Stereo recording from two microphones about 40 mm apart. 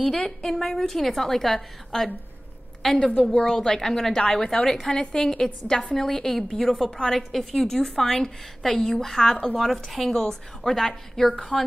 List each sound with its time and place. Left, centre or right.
0.1 s a woman's voice: centre
3.0 s a woman's voice: left
3.3 s a woman's voice: centre